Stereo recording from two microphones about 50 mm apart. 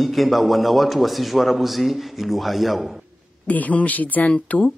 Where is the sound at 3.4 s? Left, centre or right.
Left.